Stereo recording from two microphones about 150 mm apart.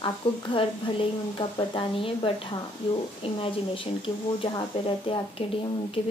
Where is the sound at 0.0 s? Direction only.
35° left (ahead or behind).